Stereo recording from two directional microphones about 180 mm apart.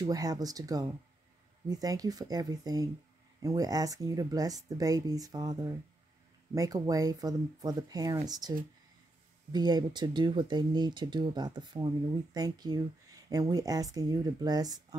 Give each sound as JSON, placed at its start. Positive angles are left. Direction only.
{"t": 0.0, "sound": "speech", "side_deg": -20}